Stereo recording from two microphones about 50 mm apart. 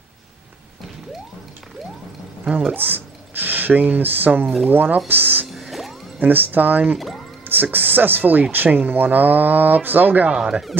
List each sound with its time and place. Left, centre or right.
2.5 s speech: right
5.5 s music: centre
6.1 s speech: right
10.3 s speech: centre